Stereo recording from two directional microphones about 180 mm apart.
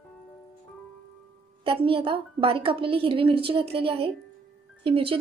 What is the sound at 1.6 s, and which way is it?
A woman's voice, 30° right (ahead or behind).